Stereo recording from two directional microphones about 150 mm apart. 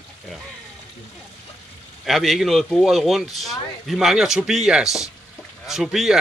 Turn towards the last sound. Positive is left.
turn(degrees=0)  # may be behind; listen again after turning